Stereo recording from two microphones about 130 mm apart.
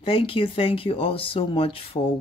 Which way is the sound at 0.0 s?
45° left (ahead or behind).